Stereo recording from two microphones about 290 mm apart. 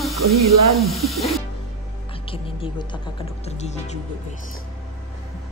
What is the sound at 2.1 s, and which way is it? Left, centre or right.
Speech, centre.